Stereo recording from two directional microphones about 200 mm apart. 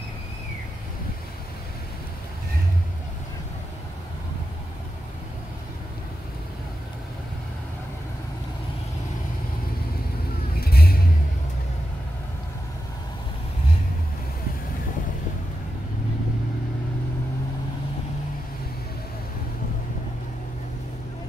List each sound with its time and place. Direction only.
10.5 s vehicle: 50° left (ahead or behind)